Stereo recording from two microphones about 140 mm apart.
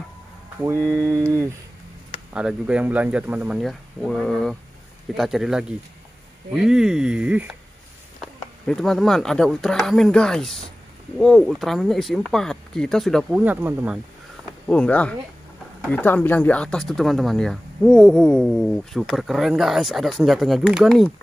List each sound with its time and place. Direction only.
0.7 s speech: 15° right (ahead or behind)
2.3 s speech: 10° right (ahead or behind)
13.3 s speech: 10° right (ahead or behind)
14.7 s speech: 10° left (ahead or behind)